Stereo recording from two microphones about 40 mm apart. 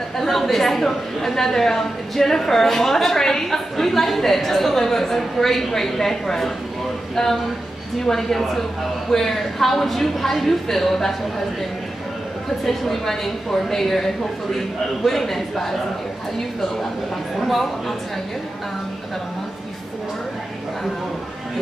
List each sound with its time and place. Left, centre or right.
0.2 s a woman's voice: centre
8.0 s a woman's voice: centre
12.6 s a woman's voice: centre
17.4 s speech: centre